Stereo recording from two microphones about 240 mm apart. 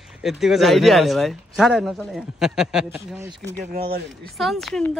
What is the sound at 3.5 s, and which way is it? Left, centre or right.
Speech, right.